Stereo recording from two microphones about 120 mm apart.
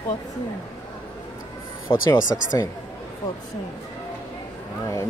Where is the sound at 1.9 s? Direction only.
40° left (ahead or behind).